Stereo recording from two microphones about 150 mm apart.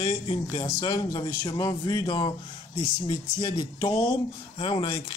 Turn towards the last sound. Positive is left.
turn(degrees=35)  # may be behind; listen again after turning